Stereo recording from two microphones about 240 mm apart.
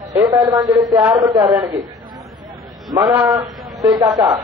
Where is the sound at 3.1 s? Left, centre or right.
Centre.